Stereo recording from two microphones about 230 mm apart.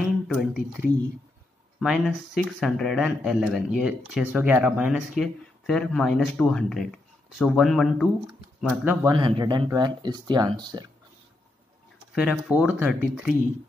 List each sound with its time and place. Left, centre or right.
0.3 s speech: centre
9.0 s speech: right
12.2 s speech: centre